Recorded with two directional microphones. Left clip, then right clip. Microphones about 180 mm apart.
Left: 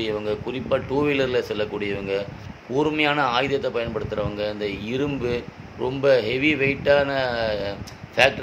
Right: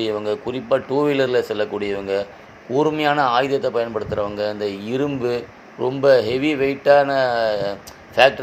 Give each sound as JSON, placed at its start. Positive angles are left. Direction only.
{"t": 0.0, "sound": "speech", "side_deg": -10}